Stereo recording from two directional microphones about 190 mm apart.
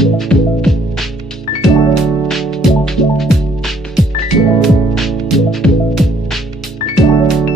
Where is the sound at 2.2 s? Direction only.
Centre (ahead or behind).